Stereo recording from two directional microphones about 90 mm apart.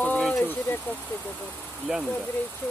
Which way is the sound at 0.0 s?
15° left (ahead or behind).